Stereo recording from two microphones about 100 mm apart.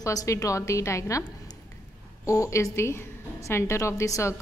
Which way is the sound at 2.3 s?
30° left (ahead or behind).